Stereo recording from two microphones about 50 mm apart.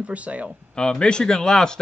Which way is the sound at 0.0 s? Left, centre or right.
Right.